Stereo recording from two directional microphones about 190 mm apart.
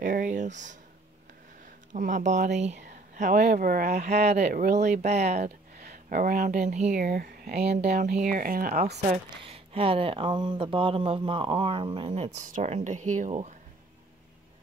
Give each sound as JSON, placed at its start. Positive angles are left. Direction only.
{"t": 0.0, "sound": "speech", "side_deg": -40}
{"t": 1.9, "sound": "speech", "side_deg": -40}
{"t": 4.5, "sound": "speech", "side_deg": -55}
{"t": 5.0, "sound": "speech", "side_deg": -35}
{"t": 8.0, "sound": "speech", "side_deg": -45}
{"t": 9.0, "sound": "speech", "side_deg": -30}
{"t": 12.4, "sound": "speech", "side_deg": -40}